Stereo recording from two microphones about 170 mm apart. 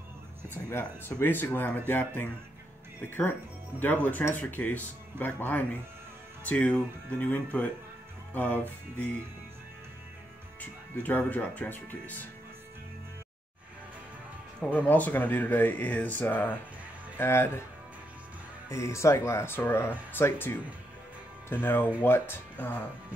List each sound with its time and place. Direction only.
0.7 s speech: 15° left (ahead or behind)
10.6 s speech: 10° left (ahead or behind)
14.6 s speech: 10° left (ahead or behind)
18.7 s speech: 15° left (ahead or behind)